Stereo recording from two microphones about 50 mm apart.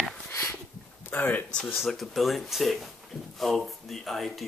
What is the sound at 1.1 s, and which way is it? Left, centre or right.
Speech, left.